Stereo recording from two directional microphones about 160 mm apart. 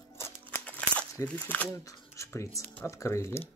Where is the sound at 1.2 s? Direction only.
10° left (ahead or behind).